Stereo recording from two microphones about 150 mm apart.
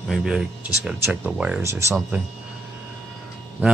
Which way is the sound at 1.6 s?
20° right (ahead or behind).